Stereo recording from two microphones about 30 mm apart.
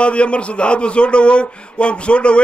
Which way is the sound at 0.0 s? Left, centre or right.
Left.